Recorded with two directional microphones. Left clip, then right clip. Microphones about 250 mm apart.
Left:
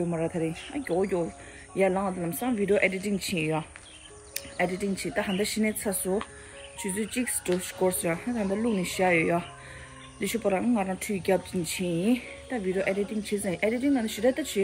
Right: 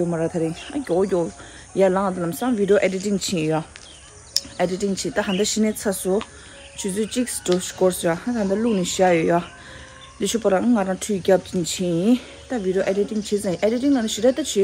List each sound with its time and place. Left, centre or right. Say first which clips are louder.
0.1 s speech: right 6 dB; centre